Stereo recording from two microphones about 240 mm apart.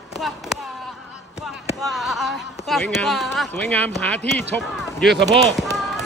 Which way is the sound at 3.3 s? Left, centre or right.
Centre.